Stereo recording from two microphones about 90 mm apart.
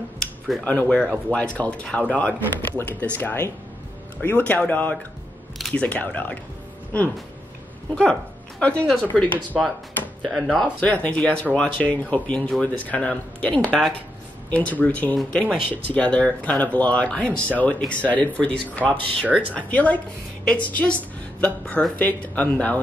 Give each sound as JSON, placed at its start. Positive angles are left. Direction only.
{"t": 0.7, "sound": "speech", "side_deg": 15}
{"t": 7.9, "sound": "speech", "side_deg": 15}
{"t": 10.2, "sound": "speech", "side_deg": 0}
{"t": 10.8, "sound": "speech", "side_deg": 15}
{"t": 15.1, "sound": "speech", "side_deg": 5}
{"t": 15.7, "sound": "speech", "side_deg": 15}